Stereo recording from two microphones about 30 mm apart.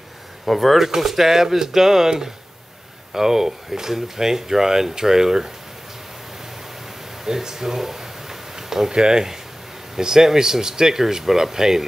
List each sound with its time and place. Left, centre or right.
0.5 s speech: centre
7.2 s a sound: centre
8.9 s speech: right